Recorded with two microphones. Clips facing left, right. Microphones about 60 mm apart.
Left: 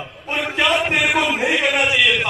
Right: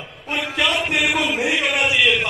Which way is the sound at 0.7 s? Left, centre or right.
Centre.